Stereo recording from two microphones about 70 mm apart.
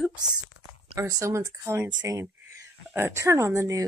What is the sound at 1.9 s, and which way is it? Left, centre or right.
Speech, right.